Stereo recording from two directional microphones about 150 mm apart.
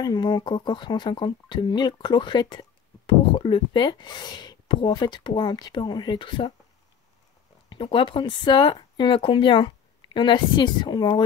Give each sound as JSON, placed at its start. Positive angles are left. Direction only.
{"t": 0.0, "sound": "speech", "side_deg": 30}
{"t": 7.7, "sound": "speech", "side_deg": 35}